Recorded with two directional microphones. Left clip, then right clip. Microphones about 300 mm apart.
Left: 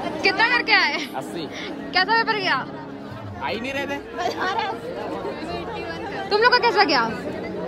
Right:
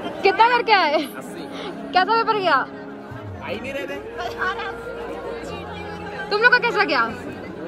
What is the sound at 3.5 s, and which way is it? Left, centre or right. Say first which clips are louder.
Speech: left 1 dB; left.